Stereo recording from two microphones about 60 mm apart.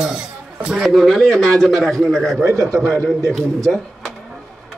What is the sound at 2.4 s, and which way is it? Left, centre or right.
Speech, right.